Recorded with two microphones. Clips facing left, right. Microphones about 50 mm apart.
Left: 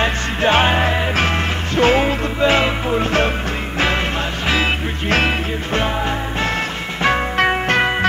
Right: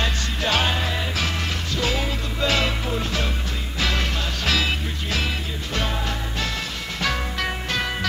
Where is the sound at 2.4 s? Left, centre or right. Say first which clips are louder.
Left 7 dB; left.